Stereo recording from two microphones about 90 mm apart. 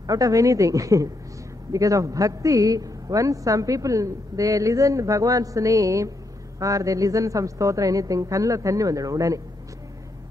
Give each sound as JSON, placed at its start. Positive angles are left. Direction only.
{"t": 0.0, "sound": "a man's voice", "side_deg": -40}